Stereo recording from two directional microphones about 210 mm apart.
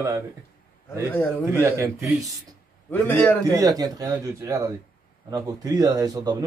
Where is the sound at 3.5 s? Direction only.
15° right (ahead or behind).